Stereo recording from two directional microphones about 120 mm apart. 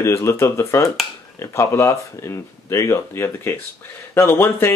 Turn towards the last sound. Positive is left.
turn(degrees=20)  # may be behind; listen again after turning